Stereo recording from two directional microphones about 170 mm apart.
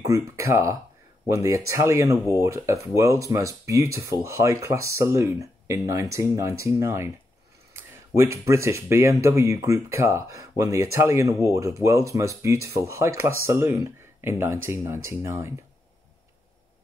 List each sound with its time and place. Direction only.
0.0 s speech: 20° right (ahead or behind)